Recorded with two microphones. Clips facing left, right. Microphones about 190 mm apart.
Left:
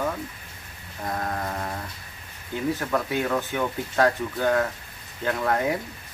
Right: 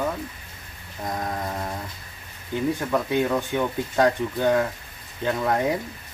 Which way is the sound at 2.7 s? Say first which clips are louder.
Right 3 dB; 15° right (ahead or behind).